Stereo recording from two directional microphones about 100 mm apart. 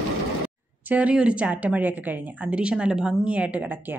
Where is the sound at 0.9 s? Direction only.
15° right (ahead or behind).